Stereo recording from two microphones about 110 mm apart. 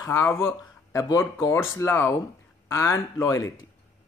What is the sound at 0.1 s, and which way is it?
Speech, 20° left (ahead or behind).